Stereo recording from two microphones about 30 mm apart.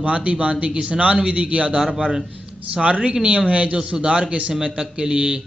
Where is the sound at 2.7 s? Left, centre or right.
Right.